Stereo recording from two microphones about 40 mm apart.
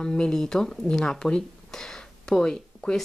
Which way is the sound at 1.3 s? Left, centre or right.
Centre.